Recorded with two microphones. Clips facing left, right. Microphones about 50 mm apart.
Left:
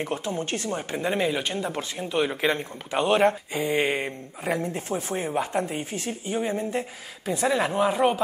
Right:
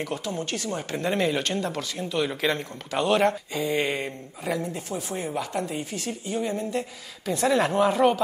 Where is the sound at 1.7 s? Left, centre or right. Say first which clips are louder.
Left 1 dB; left.